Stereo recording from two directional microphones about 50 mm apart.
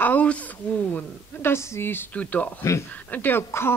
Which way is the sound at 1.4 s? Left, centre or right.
Left.